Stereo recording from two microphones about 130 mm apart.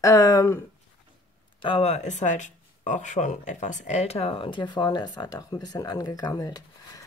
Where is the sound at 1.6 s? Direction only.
45° left (ahead or behind).